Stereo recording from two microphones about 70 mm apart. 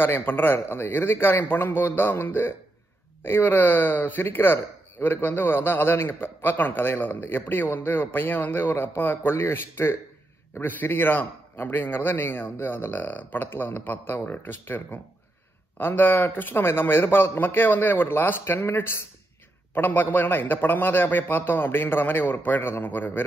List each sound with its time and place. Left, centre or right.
0.0 s a man's voice: left